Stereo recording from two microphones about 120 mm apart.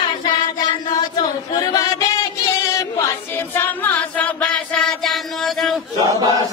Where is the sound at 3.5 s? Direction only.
15° left (ahead or behind).